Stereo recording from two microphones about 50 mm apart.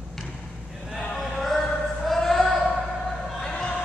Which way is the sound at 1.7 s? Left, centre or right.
Centre.